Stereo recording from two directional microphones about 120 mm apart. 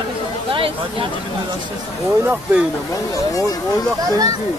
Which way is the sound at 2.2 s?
15° right (ahead or behind).